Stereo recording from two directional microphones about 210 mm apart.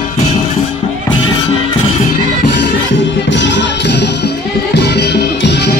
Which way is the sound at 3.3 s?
55° left (ahead or behind).